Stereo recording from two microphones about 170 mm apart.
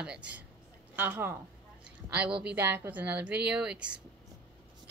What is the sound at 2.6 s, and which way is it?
A woman's voice, 10° right (ahead or behind).